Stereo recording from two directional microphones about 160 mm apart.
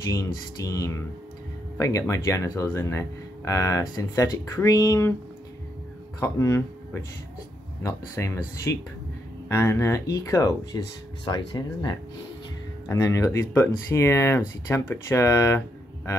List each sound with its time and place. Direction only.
0.0 s speech: 20° left (ahead or behind)
6.1 s speech: 20° left (ahead or behind)